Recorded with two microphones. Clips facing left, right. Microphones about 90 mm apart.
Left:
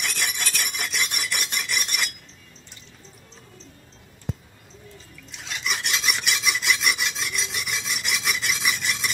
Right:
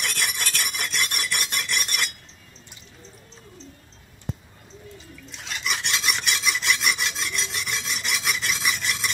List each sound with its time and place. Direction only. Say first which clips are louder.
0.0 s filing: right 1 dB; centre (ahead or behind)
5.3 s filing: even; centre (ahead or behind)